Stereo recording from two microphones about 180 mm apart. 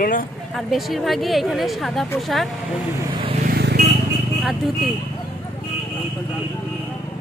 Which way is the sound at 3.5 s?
65° right (ahead or behind).